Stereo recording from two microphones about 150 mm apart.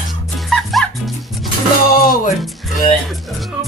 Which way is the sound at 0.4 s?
Centre (ahead or behind).